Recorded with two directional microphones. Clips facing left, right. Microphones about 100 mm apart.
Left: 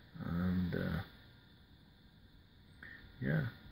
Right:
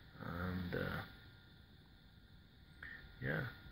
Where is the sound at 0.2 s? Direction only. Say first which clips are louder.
Left 7 dB; centre (ahead or behind).